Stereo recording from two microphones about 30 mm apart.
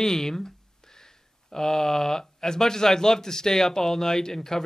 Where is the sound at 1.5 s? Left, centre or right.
Centre.